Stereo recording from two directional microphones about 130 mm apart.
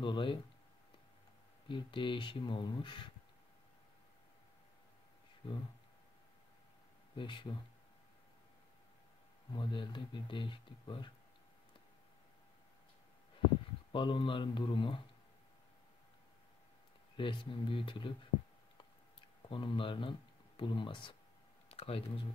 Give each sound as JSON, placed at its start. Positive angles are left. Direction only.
{"t": 0.0, "sound": "speech", "side_deg": 40}
{"t": 1.7, "sound": "speech", "side_deg": 40}
{"t": 5.4, "sound": "speech", "side_deg": 45}
{"t": 7.2, "sound": "speech", "side_deg": 40}
{"t": 9.5, "sound": "speech", "side_deg": 40}
{"t": 13.9, "sound": "speech", "side_deg": 40}
{"t": 17.2, "sound": "speech", "side_deg": 40}
{"t": 19.5, "sound": "speech", "side_deg": 40}
{"t": 21.6, "sound": "a sound", "side_deg": 50}